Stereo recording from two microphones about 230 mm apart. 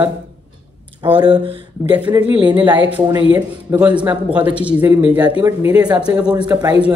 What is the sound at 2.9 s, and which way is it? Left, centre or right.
Speech, centre.